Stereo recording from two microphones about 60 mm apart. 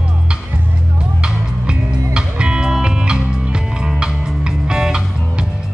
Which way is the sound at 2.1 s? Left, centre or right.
Centre.